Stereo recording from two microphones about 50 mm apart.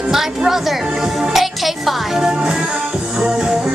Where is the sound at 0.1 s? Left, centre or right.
Centre.